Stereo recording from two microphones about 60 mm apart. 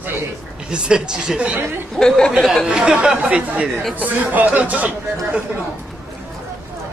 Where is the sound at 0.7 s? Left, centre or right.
Centre.